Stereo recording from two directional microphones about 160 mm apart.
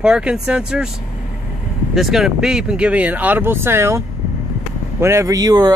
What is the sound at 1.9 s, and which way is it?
Speech, centre (ahead or behind).